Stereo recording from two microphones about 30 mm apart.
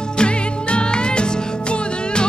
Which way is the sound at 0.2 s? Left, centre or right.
Left.